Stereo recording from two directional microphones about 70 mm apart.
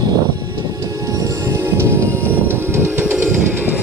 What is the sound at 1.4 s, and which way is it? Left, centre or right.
Music, right.